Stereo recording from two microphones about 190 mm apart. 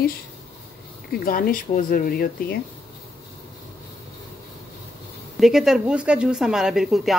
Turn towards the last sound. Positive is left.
turn(degrees=0)  # may be behind; listen again after turning